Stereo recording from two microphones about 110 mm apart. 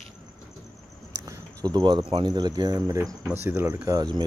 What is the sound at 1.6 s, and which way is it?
Speech, 40° right (ahead or behind).